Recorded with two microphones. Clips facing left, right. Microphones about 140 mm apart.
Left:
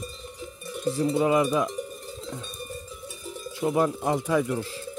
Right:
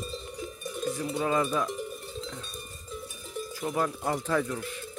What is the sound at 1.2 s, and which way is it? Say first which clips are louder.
Cowbell: left 2 dB; 15° left (ahead or behind).